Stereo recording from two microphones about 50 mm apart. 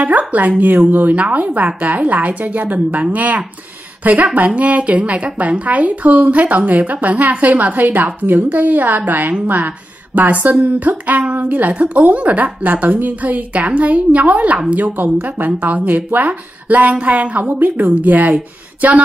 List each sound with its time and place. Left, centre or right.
0.3 s a woman's voice: right